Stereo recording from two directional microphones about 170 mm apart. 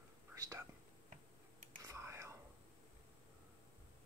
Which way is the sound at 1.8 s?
15° right (ahead or behind).